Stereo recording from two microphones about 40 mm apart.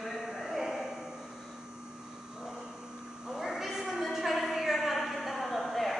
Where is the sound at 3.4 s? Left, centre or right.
Centre.